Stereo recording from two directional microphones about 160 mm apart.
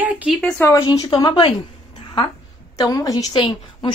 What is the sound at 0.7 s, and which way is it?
Speech, 25° left (ahead or behind).